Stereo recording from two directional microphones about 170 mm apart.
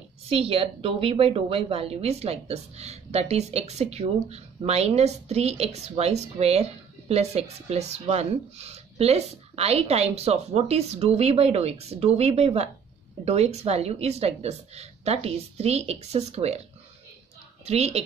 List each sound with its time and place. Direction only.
0.3 s a woman's voice: 35° right (ahead or behind)
17.6 s a woman's voice: 40° right (ahead or behind)